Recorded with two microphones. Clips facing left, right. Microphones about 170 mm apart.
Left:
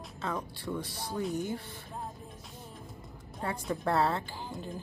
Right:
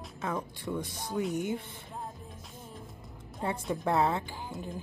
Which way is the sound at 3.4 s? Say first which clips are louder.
Right 1 dB; 20° right (ahead or behind).